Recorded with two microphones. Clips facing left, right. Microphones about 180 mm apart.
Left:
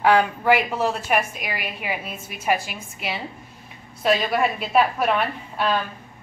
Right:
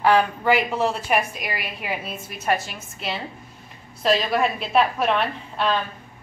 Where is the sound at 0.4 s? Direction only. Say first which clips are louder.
Even; centre (ahead or behind).